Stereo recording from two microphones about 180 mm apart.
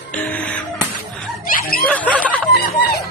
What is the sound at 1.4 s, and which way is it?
Snicker, 55° left (ahead or behind).